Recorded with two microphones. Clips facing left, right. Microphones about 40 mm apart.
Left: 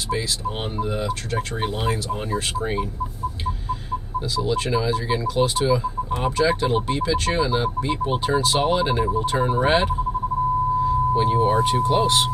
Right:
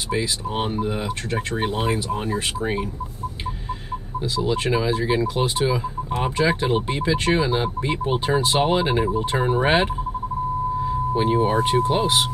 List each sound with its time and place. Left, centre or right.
0.1 s speech: centre
4.4 s speech: centre
11.1 s speech: right